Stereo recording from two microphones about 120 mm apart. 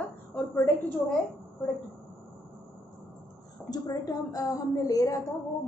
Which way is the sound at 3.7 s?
35° left (ahead or behind).